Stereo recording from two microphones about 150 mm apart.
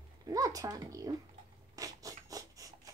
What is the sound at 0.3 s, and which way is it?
Speech, 25° right (ahead or behind).